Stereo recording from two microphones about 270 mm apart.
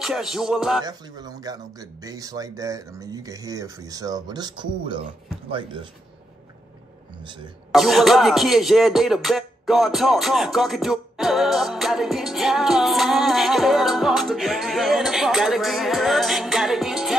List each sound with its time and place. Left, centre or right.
0.0 s music: centre
0.8 s speech: centre
7.7 s a sound: centre